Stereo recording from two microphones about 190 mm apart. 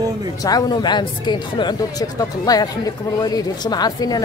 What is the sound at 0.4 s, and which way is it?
Speech, 20° left (ahead or behind).